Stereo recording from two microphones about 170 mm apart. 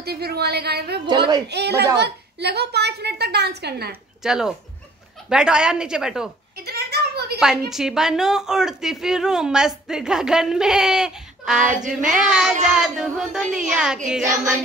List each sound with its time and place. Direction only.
0.0 s a woman's voice: 70° right (ahead or behind)
1.0 s a woman's voice: 25° right (ahead or behind)
1.5 s a woman's voice: 80° right
4.2 s a woman's voice: 5° right (ahead or behind)
6.5 s a sound: 70° right (ahead or behind)
7.3 s a woman's voice: 5° right (ahead or behind)